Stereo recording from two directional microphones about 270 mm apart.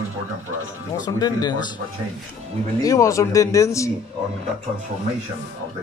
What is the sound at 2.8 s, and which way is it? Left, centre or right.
Speech, centre.